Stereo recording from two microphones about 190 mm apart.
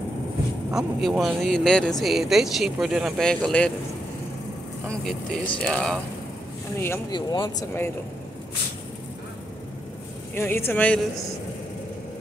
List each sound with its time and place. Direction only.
0.7 s speech: centre (ahead or behind)
4.8 s speech: 5° left (ahead or behind)
7.1 s speech: 25° left (ahead or behind)
10.3 s speech: 10° left (ahead or behind)